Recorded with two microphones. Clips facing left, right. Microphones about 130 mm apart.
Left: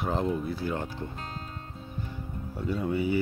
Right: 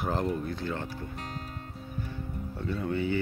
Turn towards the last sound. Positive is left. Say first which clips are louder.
# left 2 dB
turn(degrees=10)  # may be behind; listen again after turning